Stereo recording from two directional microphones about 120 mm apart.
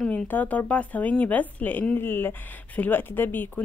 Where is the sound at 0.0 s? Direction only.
15° left (ahead or behind).